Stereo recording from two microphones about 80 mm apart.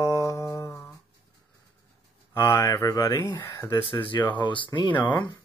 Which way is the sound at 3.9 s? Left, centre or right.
Left.